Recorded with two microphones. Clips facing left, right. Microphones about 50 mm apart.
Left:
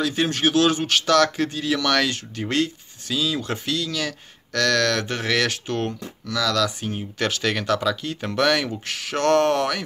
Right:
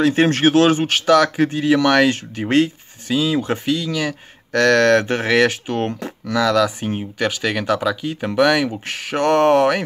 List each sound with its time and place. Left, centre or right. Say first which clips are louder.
0.0 s speech: right 7 dB; right; by 4.6 s centre
4.6 s speech: right 7 dB; right
7.2 s speech: right 2 dB; centre
8.8 s speech: right 3 dB; right